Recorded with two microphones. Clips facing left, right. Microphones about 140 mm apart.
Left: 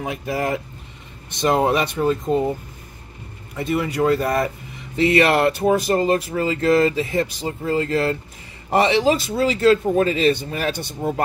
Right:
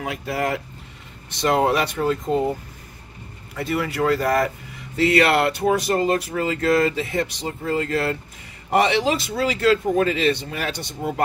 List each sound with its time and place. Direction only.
0.0 s speech: 20° left (ahead or behind)
3.5 s speech: 20° left (ahead or behind)